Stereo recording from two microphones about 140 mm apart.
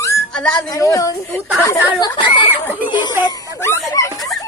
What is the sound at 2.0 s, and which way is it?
Speech, 35° left (ahead or behind).